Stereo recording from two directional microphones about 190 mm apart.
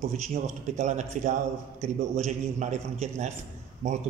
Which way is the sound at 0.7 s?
40° right (ahead or behind).